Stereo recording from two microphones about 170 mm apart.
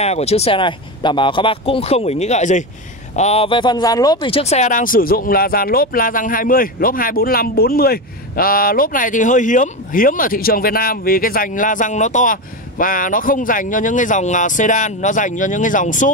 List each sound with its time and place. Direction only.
0.0 s speech: 40° left (ahead or behind)